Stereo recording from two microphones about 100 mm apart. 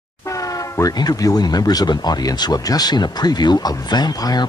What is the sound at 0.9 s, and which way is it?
Speech, 40° left (ahead or behind).